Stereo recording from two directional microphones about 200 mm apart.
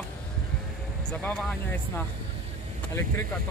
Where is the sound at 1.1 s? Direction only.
5° left (ahead or behind).